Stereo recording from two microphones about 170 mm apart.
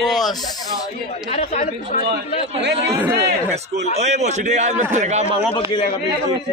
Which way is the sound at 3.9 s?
40° right (ahead or behind).